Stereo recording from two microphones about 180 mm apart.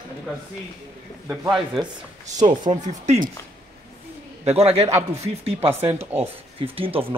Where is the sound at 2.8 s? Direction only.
40° right (ahead or behind).